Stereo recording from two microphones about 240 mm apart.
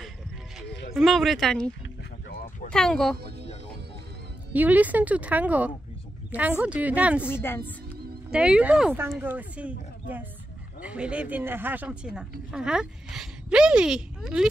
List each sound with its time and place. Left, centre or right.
0.9 s speech: centre
2.2 s a sound: left
2.7 s speech: centre
4.5 s speech: centre
7.2 s a woman's voice: centre
8.3 s speech: centre